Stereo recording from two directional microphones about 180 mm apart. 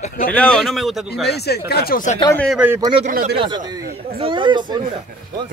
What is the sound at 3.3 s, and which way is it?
Speech, 25° right (ahead or behind).